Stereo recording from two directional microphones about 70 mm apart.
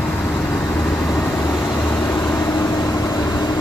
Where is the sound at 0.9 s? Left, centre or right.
Centre.